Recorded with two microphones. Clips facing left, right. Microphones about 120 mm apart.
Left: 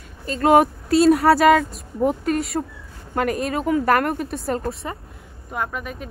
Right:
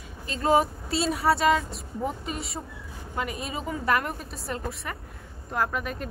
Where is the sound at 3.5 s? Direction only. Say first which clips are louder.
Left 7 dB; 70° left (ahead or behind).